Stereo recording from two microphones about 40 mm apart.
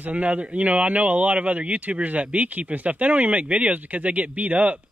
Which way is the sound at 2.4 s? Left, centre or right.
Right.